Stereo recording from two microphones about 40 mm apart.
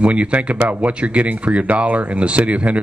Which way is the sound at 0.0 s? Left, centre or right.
Right.